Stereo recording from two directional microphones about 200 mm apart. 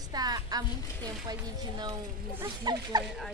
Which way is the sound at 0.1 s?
20° right (ahead or behind).